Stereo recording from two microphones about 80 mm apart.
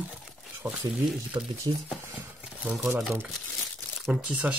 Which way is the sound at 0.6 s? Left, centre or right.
Centre.